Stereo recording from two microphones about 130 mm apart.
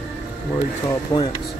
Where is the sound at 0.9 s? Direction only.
30° left (ahead or behind).